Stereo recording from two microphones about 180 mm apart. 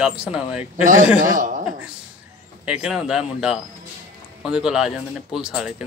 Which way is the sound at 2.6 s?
5° right (ahead or behind).